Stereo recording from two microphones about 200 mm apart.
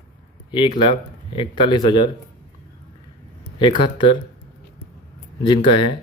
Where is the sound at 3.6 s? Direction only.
25° left (ahead or behind).